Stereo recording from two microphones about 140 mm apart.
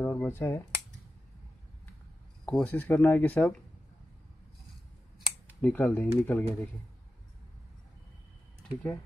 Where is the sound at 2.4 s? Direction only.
10° left (ahead or behind).